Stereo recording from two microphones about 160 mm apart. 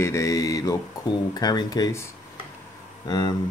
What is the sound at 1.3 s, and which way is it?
Speech, 25° left (ahead or behind).